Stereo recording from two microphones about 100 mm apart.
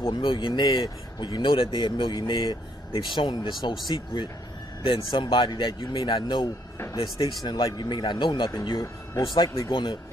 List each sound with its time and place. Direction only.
0.2 s speech: 55° left (ahead or behind)